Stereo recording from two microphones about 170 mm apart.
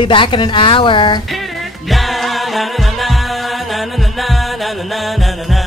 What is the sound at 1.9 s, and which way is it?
Music, centre (ahead or behind).